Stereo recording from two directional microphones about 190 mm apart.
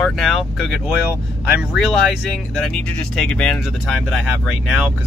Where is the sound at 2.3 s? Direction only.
Centre (ahead or behind).